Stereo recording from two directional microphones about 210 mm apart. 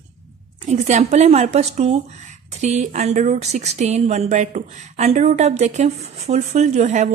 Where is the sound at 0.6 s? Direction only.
35° right (ahead or behind).